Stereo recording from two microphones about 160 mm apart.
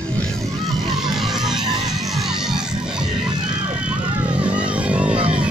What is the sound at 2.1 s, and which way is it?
Music, centre (ahead or behind).